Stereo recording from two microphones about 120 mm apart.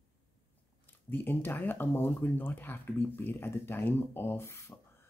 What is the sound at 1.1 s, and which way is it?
Speech, 15° left (ahead or behind).